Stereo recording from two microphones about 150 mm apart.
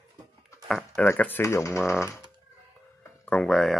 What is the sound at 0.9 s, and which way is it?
Speech, 15° left (ahead or behind).